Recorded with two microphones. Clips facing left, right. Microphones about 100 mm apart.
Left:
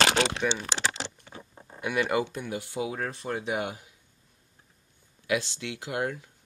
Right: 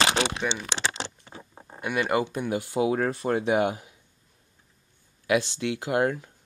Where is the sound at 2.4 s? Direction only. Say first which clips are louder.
Right 6 dB; 65° right (ahead or behind).